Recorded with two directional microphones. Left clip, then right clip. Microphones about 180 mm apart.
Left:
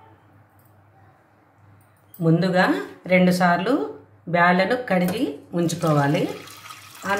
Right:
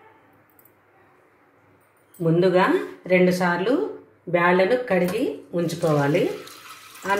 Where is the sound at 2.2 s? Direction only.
5° right (ahead or behind).